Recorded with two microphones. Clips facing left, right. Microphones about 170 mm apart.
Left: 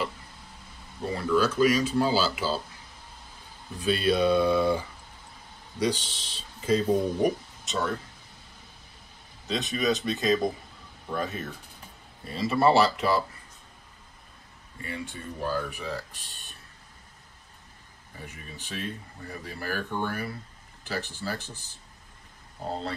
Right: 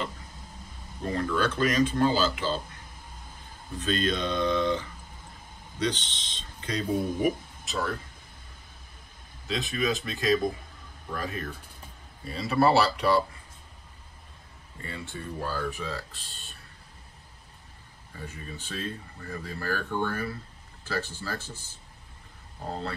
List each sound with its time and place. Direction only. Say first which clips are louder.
1.1 s speech: left 3 dB; 5° left (ahead or behind)
3.8 s speech: left 5 dB; 10° left (ahead or behind)
9.5 s speech: left 2 dB; centre (ahead or behind)
14.8 s speech: left 2 dB; 15° left (ahead or behind)
18.1 s speech: right 3 dB; 15° left (ahead or behind)